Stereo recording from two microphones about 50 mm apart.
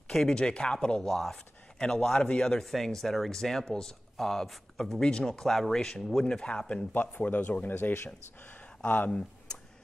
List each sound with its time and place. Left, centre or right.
0.1 s speech: centre
1.0 s speech: centre
2.6 s speech: centre; by 6.9 s left
6.9 s speech: left
8.5 s a sound: left